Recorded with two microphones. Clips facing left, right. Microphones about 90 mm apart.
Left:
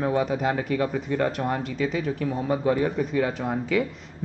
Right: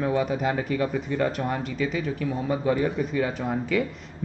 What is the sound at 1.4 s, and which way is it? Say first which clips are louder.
Speech: left 1 dB; 40° left (ahead or behind).